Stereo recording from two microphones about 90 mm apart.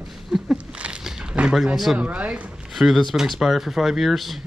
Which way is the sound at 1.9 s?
15° right (ahead or behind).